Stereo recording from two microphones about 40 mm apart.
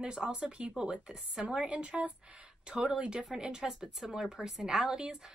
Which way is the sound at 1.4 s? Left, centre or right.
Right.